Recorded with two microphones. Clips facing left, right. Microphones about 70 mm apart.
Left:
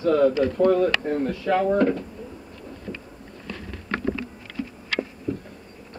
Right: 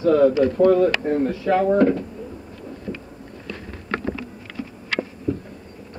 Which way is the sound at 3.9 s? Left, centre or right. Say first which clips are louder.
Even; centre.